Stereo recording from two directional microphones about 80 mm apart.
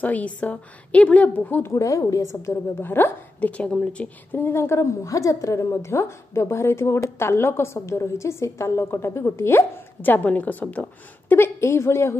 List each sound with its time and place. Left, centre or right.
0.0 s a woman's voice: centre
1.7 s a woman's voice: left
2.8 s a woman's voice: left
4.3 s a woman's voice: left